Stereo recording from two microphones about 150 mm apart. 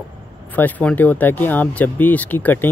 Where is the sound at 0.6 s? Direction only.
10° left (ahead or behind).